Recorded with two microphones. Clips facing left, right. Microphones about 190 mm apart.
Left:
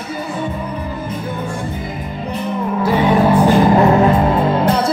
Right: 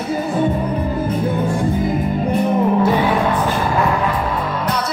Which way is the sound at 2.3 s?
45° right (ahead or behind).